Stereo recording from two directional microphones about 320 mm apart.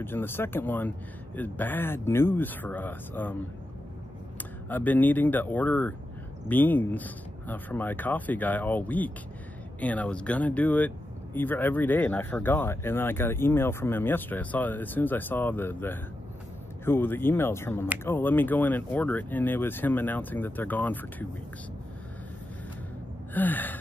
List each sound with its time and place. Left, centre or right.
0.0 s speech: centre
4.6 s speech: centre
23.3 s speech: centre